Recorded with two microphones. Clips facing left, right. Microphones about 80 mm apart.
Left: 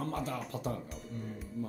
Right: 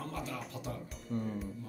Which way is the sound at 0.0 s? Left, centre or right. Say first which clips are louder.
Left 4 dB; left.